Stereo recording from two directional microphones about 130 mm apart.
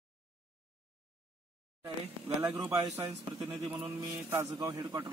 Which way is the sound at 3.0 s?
15° right (ahead or behind).